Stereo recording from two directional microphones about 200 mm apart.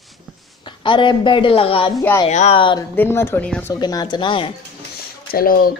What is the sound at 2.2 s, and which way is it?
Speech, 35° left (ahead or behind).